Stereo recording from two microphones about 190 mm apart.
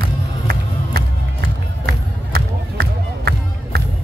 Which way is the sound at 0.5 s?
60° right (ahead or behind).